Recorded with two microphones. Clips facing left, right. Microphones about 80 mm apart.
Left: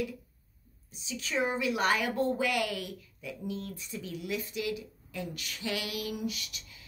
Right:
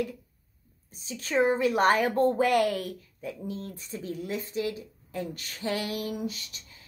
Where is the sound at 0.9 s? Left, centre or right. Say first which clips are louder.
Right 6 dB; right.